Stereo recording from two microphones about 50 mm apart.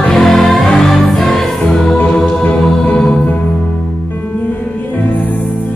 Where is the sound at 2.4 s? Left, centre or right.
Left.